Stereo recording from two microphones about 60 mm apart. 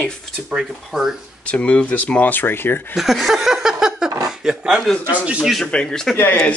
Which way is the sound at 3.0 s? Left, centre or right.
Centre.